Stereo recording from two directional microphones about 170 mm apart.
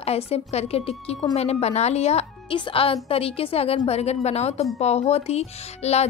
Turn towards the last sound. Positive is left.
turn(degrees=40)  # may be behind; listen again after turning